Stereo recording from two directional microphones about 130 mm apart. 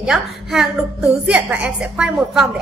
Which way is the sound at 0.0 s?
5° right (ahead or behind).